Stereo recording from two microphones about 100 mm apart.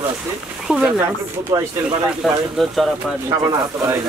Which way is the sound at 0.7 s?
10° right (ahead or behind).